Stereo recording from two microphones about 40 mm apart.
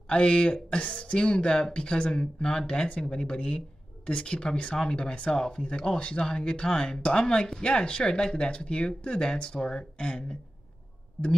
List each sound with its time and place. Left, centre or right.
0.1 s speech: left